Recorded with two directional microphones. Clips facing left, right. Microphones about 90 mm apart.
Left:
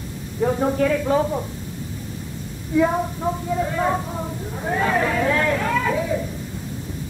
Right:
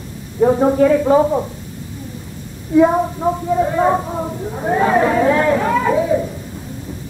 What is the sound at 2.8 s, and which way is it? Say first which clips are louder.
A woman's voice: right 7 dB; 25° right (ahead or behind).